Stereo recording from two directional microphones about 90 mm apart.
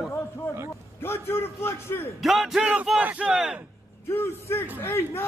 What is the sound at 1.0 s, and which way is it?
A man's voice, 25° left (ahead or behind).